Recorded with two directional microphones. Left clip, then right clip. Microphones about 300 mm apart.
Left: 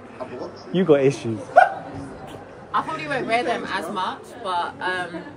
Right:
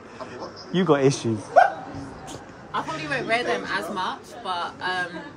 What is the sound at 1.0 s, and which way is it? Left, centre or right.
Speech, right.